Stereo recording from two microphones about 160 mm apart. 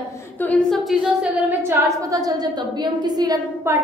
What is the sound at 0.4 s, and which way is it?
Speech, 5° left (ahead or behind).